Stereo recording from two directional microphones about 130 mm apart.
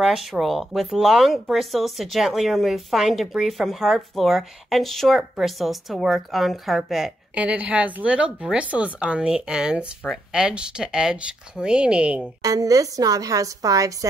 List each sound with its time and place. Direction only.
0.0 s a woman's voice: 5° right (ahead or behind)
12.4 s a woman's voice: 25° right (ahead or behind)